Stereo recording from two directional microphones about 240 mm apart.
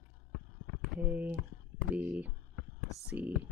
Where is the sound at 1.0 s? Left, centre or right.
Centre.